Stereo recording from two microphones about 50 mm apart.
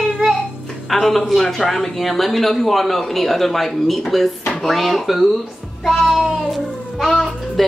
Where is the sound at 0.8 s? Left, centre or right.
Centre.